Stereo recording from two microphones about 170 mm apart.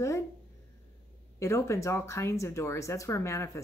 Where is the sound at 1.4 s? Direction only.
15° left (ahead or behind).